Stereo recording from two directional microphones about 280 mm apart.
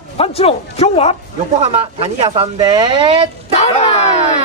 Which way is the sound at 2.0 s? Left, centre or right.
Centre.